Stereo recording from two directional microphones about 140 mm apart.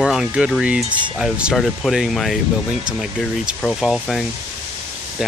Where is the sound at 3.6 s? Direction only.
Centre (ahead or behind).